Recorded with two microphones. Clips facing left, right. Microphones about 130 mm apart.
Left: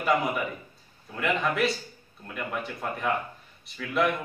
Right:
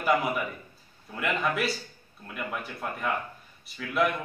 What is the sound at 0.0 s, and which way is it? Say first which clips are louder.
Speech: even; centre (ahead or behind).